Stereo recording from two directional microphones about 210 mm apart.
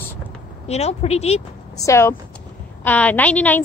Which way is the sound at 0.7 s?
30° left (ahead or behind).